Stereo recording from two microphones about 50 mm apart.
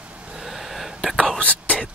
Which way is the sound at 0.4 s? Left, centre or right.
Centre.